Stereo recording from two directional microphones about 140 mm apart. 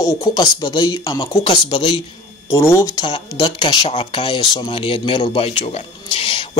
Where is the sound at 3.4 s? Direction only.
40° left (ahead or behind).